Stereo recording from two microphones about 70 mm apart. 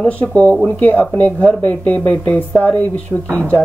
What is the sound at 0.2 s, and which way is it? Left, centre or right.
Speech, centre.